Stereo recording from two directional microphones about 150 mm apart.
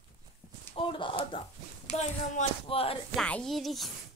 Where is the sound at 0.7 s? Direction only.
35° left (ahead or behind).